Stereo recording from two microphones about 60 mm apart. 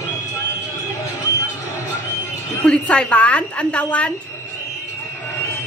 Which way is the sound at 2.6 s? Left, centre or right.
Centre.